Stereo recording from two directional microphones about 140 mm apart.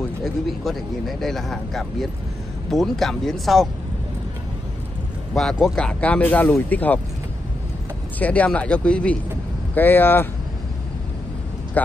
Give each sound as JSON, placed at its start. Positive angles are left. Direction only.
{"t": 0.2, "sound": "speech", "side_deg": 0}
{"t": 5.3, "sound": "speech", "side_deg": 5}
{"t": 8.2, "sound": "speech", "side_deg": 10}